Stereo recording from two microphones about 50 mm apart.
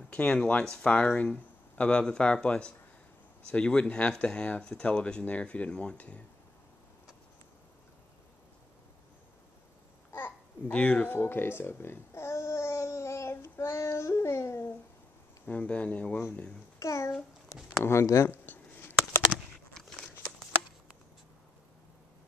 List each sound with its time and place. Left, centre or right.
0.1 s speech: left
10.7 s speech: left
11.1 s babbling: left
13.8 s music: left
15.4 s speech: left
16.8 s a sound: left
17.8 s speech: left
18.3 s a sound: left
19.7 s a sound: centre